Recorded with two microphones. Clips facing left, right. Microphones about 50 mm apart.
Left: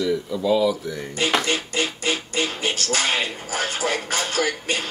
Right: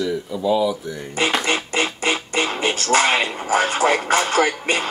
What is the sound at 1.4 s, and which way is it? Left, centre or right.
Music, right.